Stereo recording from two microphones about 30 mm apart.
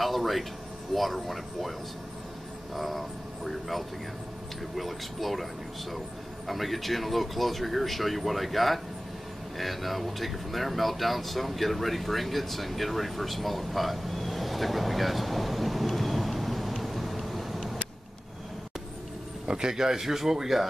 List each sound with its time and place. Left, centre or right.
0.0 s speech: centre
2.7 s speech: centre
19.4 s a sound: right
19.7 s speech: centre